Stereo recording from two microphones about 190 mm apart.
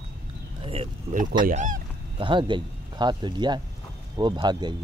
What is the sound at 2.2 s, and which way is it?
Speech, 25° right (ahead or behind).